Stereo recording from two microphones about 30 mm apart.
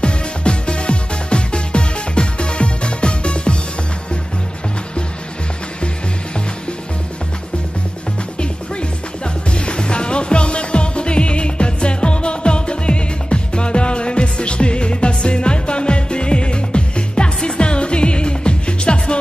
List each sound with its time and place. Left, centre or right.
0.0 s music: left
9.5 s music: left